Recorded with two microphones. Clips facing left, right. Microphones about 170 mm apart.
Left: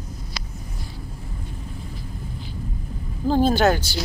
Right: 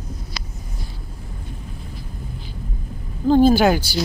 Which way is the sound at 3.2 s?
Centre (ahead or behind).